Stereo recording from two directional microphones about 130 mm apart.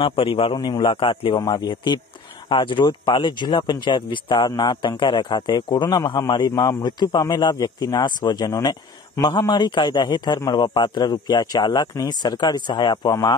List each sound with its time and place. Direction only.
0.0 s a man's voice: 45° left (ahead or behind)
0.6 s speech: 35° left (ahead or behind)
1.4 s speech: 30° left (ahead or behind)